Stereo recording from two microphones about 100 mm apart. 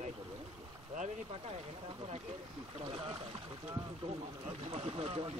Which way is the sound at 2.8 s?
60° right (ahead or behind).